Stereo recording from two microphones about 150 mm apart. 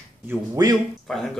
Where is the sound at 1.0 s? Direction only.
5° left (ahead or behind).